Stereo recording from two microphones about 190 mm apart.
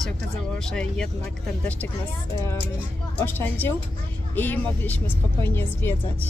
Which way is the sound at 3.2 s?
10° left (ahead or behind).